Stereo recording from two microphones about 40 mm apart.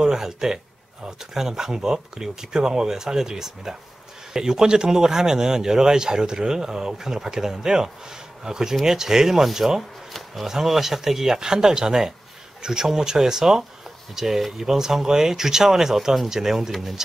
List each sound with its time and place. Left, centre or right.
0.0 s speech: centre